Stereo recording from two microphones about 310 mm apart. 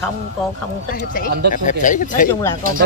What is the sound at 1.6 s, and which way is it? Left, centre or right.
Speech, left.